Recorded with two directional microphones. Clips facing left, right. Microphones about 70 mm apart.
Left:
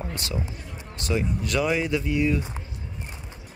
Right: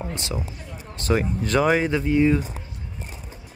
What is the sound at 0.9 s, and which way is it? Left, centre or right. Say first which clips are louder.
Speech: right 4 dB; right.